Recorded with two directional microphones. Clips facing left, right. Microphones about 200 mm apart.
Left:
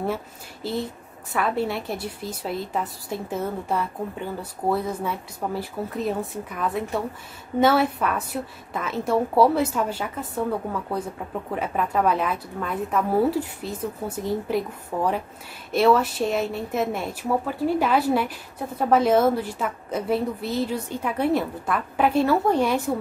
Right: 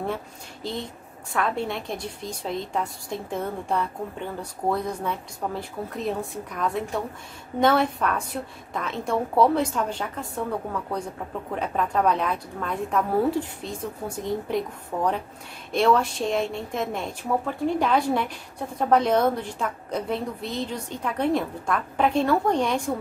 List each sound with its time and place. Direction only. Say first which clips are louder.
0.6 s a woman's voice: left 4 dB; 5° left (ahead or behind)